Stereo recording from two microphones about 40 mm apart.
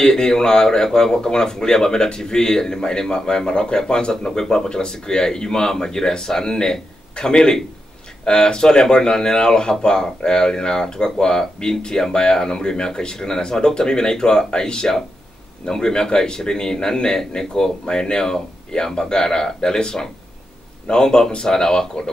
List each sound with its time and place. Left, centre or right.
0.0 s a man's voice: centre